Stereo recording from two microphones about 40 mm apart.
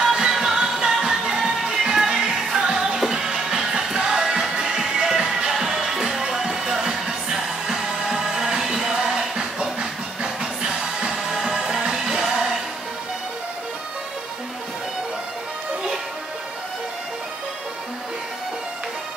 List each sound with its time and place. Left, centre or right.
0.0 s music: centre
0.3 s music: centre
0.6 s music: centre